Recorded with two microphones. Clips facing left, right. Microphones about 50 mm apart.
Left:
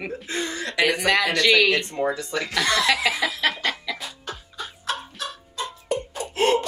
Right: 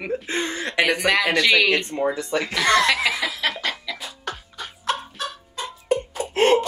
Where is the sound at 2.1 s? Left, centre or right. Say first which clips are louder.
Right 2 dB; right.